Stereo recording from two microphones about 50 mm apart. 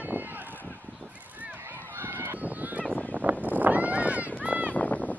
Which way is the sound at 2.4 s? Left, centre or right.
Right.